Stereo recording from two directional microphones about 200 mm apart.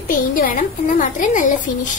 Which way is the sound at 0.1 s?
45° left (ahead or behind).